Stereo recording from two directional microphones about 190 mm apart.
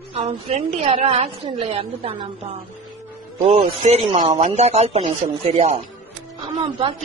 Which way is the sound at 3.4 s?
30° right (ahead or behind).